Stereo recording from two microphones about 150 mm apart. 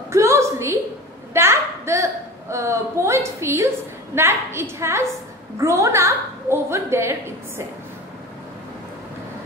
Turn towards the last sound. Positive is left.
turn(degrees=-15)  # may be behind; listen again after turning